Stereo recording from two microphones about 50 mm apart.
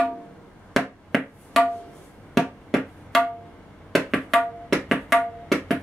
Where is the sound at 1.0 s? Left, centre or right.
Centre.